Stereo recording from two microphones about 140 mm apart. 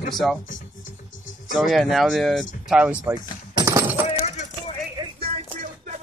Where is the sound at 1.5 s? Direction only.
Centre (ahead or behind).